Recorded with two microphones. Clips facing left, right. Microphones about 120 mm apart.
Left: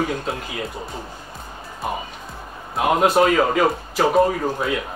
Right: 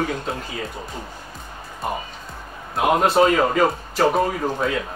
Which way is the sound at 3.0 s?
10° left (ahead or behind).